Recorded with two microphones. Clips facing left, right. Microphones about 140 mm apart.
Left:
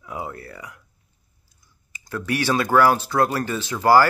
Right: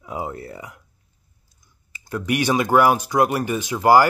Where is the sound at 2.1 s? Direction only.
15° right (ahead or behind).